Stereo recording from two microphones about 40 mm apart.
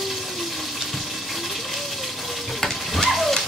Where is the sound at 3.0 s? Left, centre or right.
Centre.